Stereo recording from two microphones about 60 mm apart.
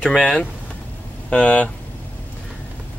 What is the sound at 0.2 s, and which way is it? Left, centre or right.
Speech, centre.